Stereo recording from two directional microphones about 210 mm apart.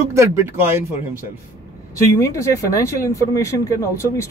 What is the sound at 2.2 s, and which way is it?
Speech, 15° left (ahead or behind).